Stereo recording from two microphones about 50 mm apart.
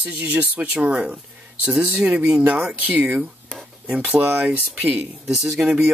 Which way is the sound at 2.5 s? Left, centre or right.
Centre.